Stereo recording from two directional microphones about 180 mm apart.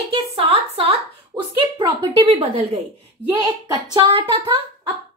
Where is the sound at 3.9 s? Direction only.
30° right (ahead or behind).